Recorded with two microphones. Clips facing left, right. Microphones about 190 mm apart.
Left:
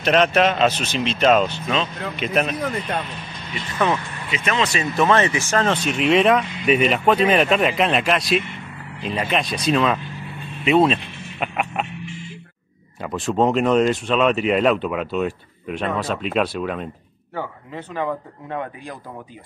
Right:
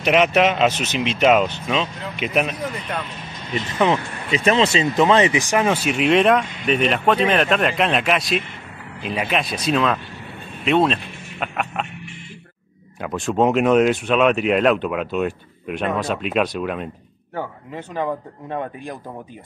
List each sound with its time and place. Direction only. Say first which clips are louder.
0.0 s speech: right 1 dB; 10° right (ahead or behind)
3.7 s speech: right 2 dB; 15° right (ahead or behind)
4.3 s speech: right 5 dB; 35° right (ahead or behind); by 11.9 s 5° left (ahead or behind)
13.0 s speech: right 1 dB; centre (ahead or behind)
17.4 s speech: right 1 dB; 15° right (ahead or behind)